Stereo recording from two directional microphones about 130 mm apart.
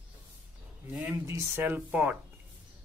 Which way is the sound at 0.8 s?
10° right (ahead or behind).